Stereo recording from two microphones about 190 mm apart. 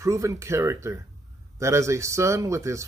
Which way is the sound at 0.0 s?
15° right (ahead or behind).